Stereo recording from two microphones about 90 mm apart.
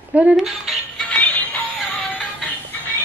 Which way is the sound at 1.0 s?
15° left (ahead or behind).